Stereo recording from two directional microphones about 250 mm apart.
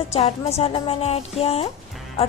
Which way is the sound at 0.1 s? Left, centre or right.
Left.